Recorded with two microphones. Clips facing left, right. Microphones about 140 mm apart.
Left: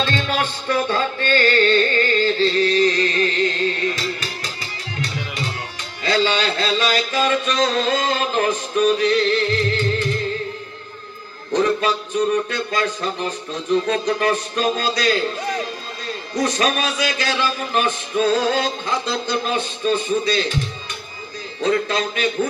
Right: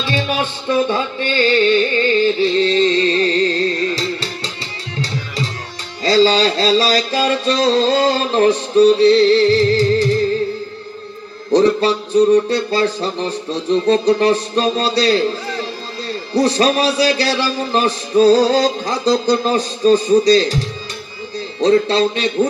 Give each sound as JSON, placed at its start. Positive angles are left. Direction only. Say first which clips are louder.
{"t": 0.0, "sound": "music", "louder": "right 2 dB", "side_deg": -15}
{"t": 2.6, "sound": "music", "louder": "right 3 dB", "side_deg": -25}
{"t": 6.0, "sound": "a man's voice", "louder": "right 7 dB", "side_deg": -35}
{"t": 11.5, "sound": "a man's voice", "louder": "right 6 dB", "side_deg": -35}
{"t": 21.5, "sound": "a man's voice", "louder": "right 7 dB", "side_deg": -30}